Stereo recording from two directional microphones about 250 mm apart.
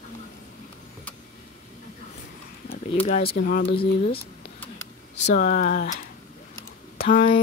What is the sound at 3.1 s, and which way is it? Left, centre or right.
Speech, left.